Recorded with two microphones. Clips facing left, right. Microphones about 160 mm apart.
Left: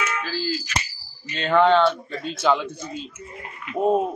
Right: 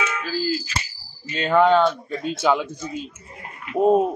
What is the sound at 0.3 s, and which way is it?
Speech, 5° right (ahead or behind).